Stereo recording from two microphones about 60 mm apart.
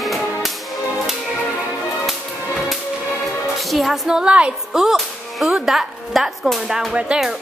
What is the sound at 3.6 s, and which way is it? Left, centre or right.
Music, centre.